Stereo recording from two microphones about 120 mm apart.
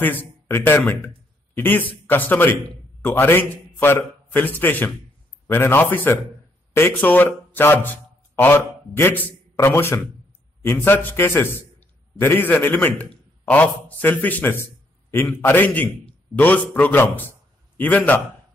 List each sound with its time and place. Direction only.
0.0 s a man's voice: 15° left (ahead or behind)